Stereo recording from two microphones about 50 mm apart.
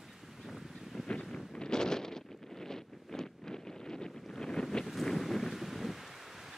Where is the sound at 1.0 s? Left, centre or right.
Left.